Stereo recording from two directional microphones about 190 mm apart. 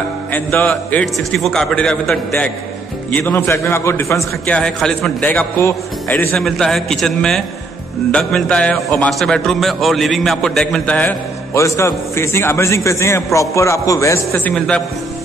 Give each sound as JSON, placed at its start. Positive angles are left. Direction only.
{"t": 0.3, "sound": "a man's voice", "side_deg": 10}